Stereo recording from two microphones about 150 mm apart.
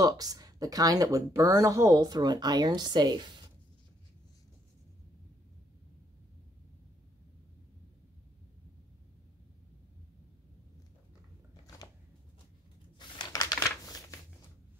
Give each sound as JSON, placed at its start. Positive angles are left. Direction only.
{"t": 0.0, "sound": "speech", "side_deg": -25}
{"t": 13.2, "sound": "typing", "side_deg": 25}
{"t": 13.6, "sound": "crumpling", "side_deg": 20}